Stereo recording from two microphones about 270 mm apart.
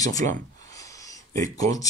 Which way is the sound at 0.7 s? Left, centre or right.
Centre.